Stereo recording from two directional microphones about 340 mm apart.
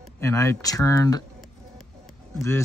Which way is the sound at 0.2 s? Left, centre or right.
Centre.